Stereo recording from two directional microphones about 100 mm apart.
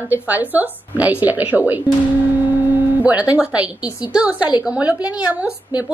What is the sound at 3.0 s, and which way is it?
A woman's voice, 15° right (ahead or behind).